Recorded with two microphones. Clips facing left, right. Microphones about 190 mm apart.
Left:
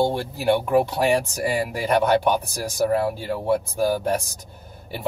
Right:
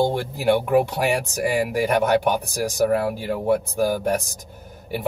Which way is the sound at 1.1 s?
15° right (ahead or behind).